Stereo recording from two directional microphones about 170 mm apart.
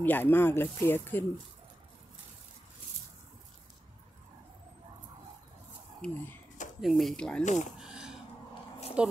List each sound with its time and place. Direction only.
0.0 s speech: 10° left (ahead or behind)
5.9 s speech: 5° left (ahead or behind)
7.4 s speech: 45° left (ahead or behind)
7.8 s a sound: 5° right (ahead or behind)
9.0 s speech: 5° right (ahead or behind)